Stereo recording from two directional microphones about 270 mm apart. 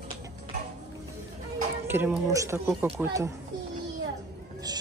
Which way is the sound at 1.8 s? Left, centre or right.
Centre.